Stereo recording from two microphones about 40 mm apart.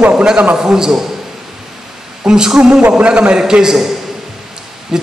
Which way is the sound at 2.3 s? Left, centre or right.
Centre.